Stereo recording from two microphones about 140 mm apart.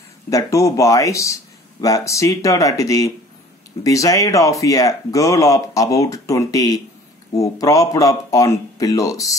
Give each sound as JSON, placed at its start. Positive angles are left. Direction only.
{"t": 0.3, "sound": "speech", "side_deg": 25}